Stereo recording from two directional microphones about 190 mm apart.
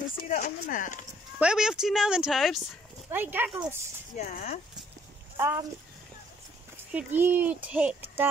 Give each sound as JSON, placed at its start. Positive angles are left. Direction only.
{"t": 0.2, "sound": "speech", "side_deg": 45}
{"t": 1.4, "sound": "speech", "side_deg": -5}
{"t": 4.2, "sound": "speech", "side_deg": 40}
{"t": 5.4, "sound": "speech", "side_deg": -10}
{"t": 6.9, "sound": "speech", "side_deg": -10}